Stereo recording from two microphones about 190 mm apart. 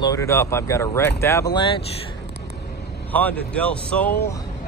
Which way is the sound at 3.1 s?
10° left (ahead or behind).